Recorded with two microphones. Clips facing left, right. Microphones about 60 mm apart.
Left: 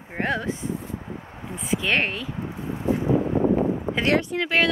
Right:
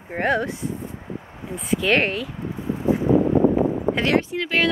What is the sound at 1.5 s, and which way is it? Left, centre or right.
Speech, centre.